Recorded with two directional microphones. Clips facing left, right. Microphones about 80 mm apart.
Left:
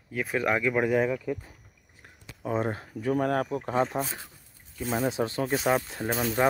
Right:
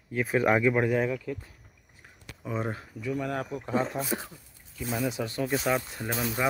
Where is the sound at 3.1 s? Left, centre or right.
Left.